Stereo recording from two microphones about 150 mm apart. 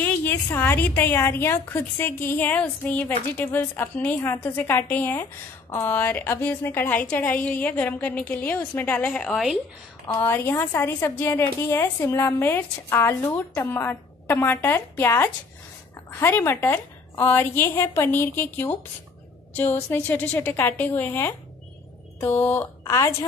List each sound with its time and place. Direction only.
0.0 s a woman's voice: 10° left (ahead or behind)
10.2 s a woman's voice: 15° left (ahead or behind)